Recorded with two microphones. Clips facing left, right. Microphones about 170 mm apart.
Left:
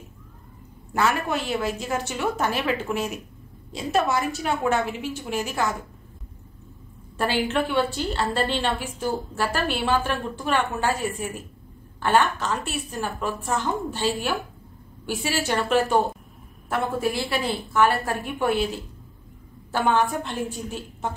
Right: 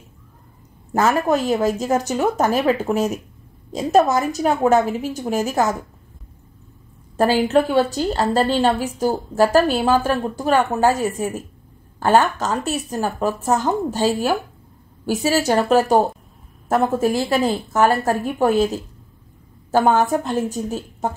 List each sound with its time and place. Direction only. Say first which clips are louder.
0.9 s a woman's voice: right 6 dB; 40° right (ahead or behind)
7.2 s a woman's voice: right 8 dB; 40° right (ahead or behind)